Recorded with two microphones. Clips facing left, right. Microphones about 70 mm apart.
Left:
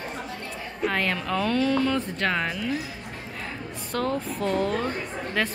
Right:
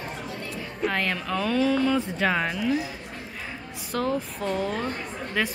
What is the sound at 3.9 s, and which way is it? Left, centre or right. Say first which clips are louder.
Speech: even; centre.